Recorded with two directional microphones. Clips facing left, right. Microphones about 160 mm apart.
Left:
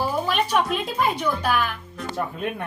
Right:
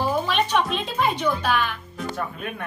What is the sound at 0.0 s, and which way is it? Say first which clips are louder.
Speech: right 1 dB; 5° left (ahead or behind).